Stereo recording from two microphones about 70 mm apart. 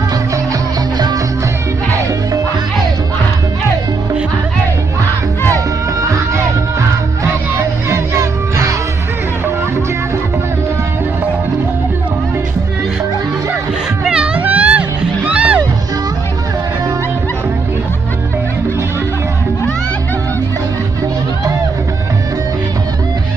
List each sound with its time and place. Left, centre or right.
0.9 s music: right
1.9 s music: right
6.0 s music: right
7.5 s music: right
14.0 s music: centre